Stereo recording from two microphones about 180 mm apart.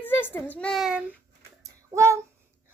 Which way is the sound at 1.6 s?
15° right (ahead or behind).